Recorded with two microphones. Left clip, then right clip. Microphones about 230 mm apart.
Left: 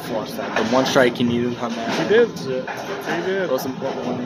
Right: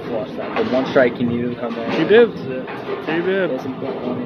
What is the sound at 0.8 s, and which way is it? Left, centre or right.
Speech, left.